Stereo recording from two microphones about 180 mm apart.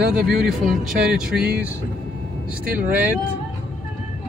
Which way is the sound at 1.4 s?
60° right (ahead or behind).